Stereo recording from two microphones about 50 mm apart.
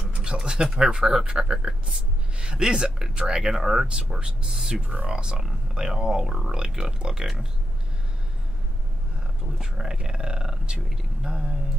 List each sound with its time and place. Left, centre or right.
0.0 s speech: centre
4.8 s speech: right
5.1 s speech: centre
9.6 s speech: centre